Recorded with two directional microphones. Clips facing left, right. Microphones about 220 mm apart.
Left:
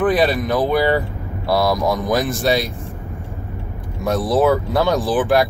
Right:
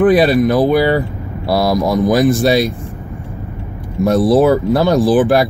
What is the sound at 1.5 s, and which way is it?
Speech, 5° right (ahead or behind).